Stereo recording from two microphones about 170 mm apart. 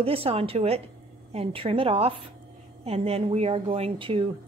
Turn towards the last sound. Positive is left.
turn(degrees=-35)  # may be behind; listen again after turning